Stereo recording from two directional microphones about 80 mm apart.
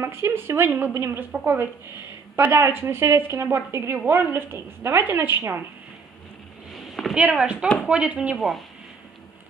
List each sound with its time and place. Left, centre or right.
0.0 s a woman's voice: right
6.7 s a sound: centre
7.2 s speech: centre